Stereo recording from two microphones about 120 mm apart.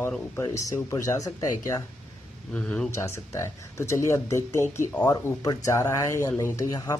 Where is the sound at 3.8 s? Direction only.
25° left (ahead or behind).